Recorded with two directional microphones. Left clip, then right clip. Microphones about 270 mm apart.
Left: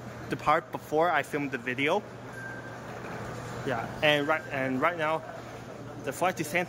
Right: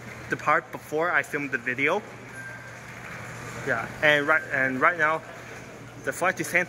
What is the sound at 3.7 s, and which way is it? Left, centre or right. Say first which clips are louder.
Speech: right 4 dB; centre.